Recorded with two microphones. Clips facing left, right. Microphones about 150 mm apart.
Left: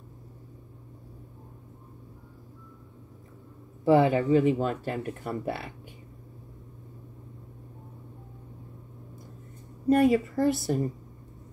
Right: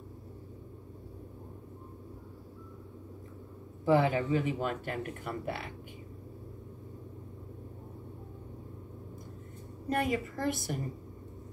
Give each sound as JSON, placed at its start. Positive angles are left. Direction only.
{"t": 3.8, "sound": "speech", "side_deg": 30}
{"t": 9.8, "sound": "a woman's voice", "side_deg": 30}